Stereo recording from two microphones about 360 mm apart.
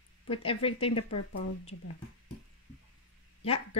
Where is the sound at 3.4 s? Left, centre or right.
Centre.